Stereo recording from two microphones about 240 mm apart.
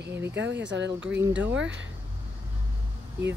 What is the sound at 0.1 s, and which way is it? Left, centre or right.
Speech, centre.